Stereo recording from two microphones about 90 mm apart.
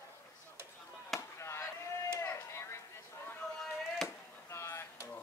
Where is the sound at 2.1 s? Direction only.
30° left (ahead or behind).